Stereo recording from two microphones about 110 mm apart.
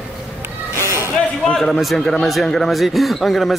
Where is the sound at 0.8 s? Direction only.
25° right (ahead or behind).